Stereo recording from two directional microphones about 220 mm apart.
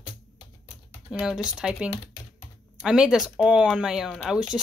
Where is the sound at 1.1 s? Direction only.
Centre (ahead or behind).